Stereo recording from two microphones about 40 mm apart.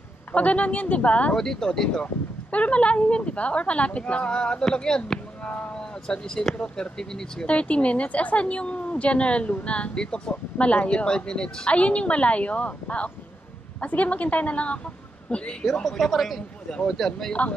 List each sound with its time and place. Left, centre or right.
0.3 s a woman's voice: left
1.3 s speech: centre
2.5 s a woman's voice: left; by 5.2 s centre
5.4 s speech: left
5.8 s speech: centre
7.4 s a woman's voice: left
9.9 s speech: centre
10.6 s a woman's voice: left
15.6 s speech: centre
17.3 s a woman's voice: left